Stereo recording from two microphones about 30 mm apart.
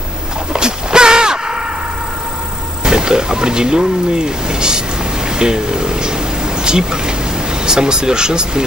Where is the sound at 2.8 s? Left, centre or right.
Right.